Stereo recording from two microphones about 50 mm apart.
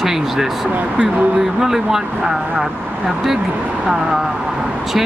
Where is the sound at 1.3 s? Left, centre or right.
Centre.